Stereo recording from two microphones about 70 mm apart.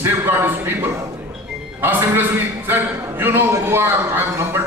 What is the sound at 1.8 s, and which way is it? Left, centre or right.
A man's voice, right.